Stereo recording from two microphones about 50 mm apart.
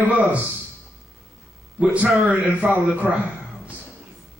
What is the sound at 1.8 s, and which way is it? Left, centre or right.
Speech, right.